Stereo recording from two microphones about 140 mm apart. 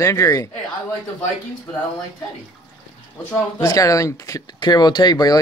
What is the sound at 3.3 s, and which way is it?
A man's voice, 25° left (ahead or behind).